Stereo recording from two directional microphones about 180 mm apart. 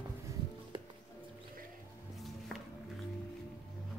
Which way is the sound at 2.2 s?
Centre (ahead or behind).